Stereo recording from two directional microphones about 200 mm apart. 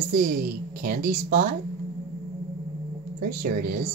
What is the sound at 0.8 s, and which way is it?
Speech, 45° right (ahead or behind).